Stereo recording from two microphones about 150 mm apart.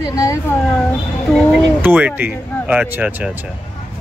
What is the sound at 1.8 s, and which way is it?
Speech, 10° right (ahead or behind).